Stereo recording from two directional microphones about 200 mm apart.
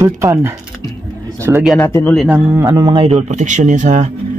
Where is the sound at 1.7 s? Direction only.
10° left (ahead or behind).